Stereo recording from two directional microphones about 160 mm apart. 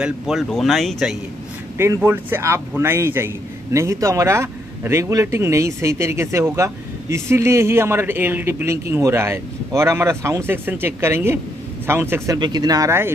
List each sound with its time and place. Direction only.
0.0 s speech: centre (ahead or behind)
1.8 s a man's voice: 15° right (ahead or behind)
12.4 s speech: 25° right (ahead or behind)